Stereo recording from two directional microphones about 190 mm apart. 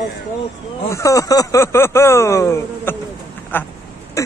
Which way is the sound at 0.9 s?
15° left (ahead or behind).